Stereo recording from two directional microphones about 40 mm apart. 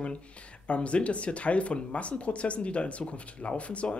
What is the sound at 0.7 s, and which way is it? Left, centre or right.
Speech, left.